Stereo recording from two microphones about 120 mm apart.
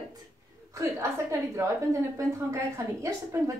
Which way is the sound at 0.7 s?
20° right (ahead or behind).